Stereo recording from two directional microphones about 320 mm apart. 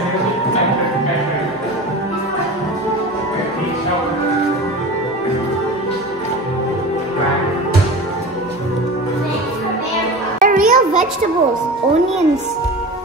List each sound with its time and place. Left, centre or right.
10.4 s music: right